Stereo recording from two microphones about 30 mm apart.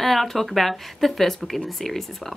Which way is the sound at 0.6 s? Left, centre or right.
Centre.